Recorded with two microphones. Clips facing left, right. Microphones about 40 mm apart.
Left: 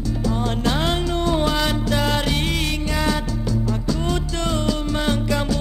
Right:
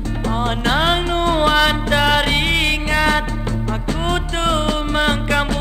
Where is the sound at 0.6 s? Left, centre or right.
Right.